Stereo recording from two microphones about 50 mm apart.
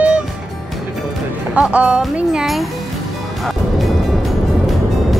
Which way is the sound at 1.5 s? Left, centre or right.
Right.